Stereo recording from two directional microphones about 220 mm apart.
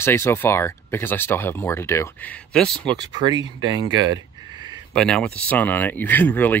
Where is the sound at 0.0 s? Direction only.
10° left (ahead or behind).